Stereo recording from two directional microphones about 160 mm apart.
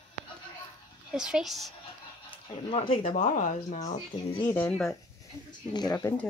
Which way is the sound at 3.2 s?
50° left (ahead or behind).